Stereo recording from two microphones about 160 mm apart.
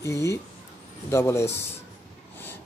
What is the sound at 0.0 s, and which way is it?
Speech, 20° left (ahead or behind).